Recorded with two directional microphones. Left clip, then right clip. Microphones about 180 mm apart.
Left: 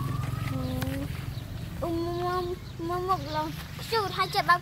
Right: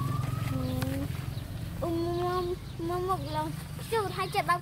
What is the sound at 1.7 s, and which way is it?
Speech, 5° right (ahead or behind).